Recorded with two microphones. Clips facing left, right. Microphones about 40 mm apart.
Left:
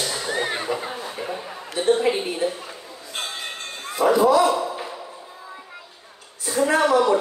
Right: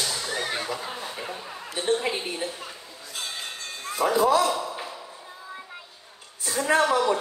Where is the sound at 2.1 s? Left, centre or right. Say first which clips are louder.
Left 7 dB; left.